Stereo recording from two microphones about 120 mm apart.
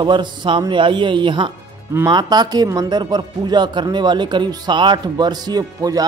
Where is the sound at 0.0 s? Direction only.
40° right (ahead or behind).